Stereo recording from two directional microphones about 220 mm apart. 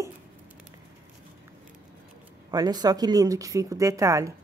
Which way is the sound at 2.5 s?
20° right (ahead or behind).